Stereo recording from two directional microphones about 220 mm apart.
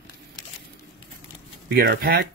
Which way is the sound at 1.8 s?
45° right (ahead or behind).